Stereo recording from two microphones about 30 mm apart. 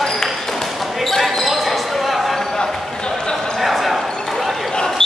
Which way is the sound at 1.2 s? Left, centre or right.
Centre.